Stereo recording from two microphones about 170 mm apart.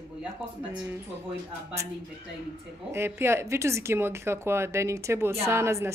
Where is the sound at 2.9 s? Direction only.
15° right (ahead or behind).